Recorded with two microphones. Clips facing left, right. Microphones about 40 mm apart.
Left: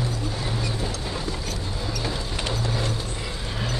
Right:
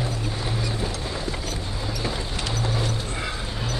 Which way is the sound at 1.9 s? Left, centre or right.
Centre.